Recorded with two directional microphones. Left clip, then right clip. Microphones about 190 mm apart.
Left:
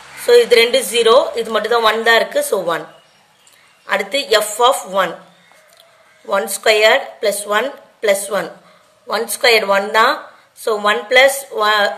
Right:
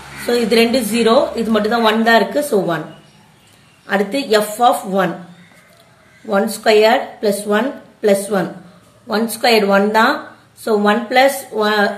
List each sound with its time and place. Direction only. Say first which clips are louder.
0.3 s speech: left 4 dB; 35° left (ahead or behind)
3.8 s speech: even; 35° left (ahead or behind)
6.2 s speech: even; 35° left (ahead or behind)